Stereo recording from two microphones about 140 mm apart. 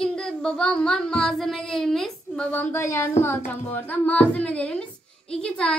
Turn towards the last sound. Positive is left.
turn(degrees=5)  # may be behind; listen again after turning